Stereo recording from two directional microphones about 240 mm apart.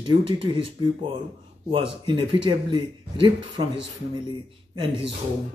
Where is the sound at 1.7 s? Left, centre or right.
Right.